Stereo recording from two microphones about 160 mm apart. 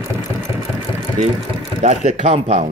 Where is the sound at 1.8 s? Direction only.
45° right (ahead or behind).